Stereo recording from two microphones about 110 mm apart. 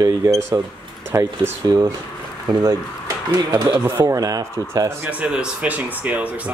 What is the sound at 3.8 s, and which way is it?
Speech, 25° right (ahead or behind).